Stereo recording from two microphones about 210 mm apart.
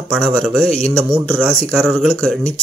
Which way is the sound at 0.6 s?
30° left (ahead or behind).